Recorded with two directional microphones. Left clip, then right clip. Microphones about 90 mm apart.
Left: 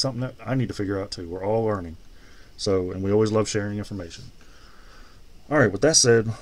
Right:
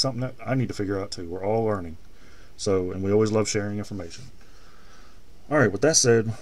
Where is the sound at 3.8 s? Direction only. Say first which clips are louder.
Left 1 dB; 25° left (ahead or behind).